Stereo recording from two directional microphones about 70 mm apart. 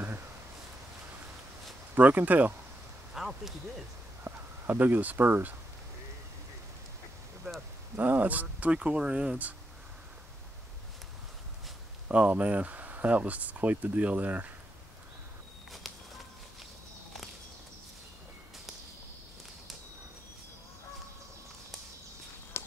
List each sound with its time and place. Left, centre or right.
2.0 s speech: right
3.2 s speech: centre
4.2 s speech: right
7.5 s a sound: centre
7.9 s speech: right
12.1 s speech: centre
15.8 s walk: centre
22.5 s a sound: left